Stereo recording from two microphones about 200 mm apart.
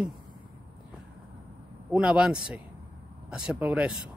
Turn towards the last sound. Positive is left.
turn(degrees=-5)  # may be behind; listen again after turning